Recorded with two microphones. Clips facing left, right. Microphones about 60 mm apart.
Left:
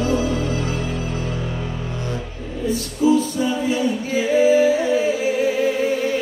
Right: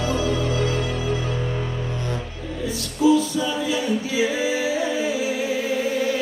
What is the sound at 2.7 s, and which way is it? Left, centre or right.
A capella, left.